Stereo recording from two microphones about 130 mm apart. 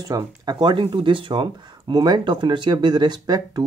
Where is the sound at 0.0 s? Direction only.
25° right (ahead or behind).